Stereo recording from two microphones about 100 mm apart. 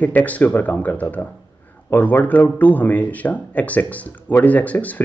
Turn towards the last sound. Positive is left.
turn(degrees=15)  # may be behind; listen again after turning